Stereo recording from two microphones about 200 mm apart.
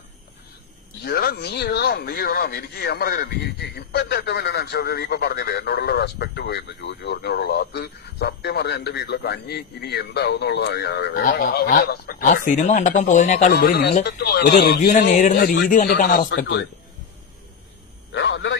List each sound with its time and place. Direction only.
1.0 s speech: 50° left (ahead or behind)
13.5 s speech: 55° left (ahead or behind)
18.1 s a sound: 65° left (ahead or behind)